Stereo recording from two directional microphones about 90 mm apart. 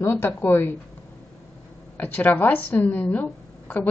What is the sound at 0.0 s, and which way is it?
Speech, 25° left (ahead or behind).